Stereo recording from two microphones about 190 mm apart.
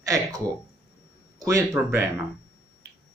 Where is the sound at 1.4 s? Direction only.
15° right (ahead or behind).